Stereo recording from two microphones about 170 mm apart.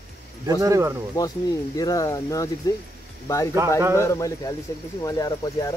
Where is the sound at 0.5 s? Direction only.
20° right (ahead or behind).